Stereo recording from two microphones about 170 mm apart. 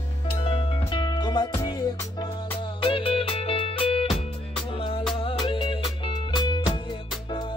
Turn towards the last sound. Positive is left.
turn(degrees=25)  # may be behind; listen again after turning